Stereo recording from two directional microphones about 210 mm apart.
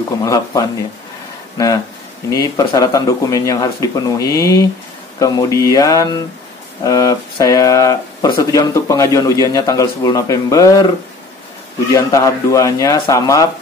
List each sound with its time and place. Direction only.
0.2 s speech: 15° left (ahead or behind)
2.2 s speech: 15° left (ahead or behind)
11.9 s speech: 15° left (ahead or behind)